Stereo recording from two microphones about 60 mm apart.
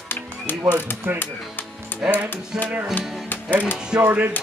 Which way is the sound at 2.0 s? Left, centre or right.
Centre.